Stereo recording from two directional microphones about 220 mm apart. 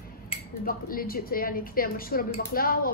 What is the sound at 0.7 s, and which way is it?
A woman's voice, 40° left (ahead or behind).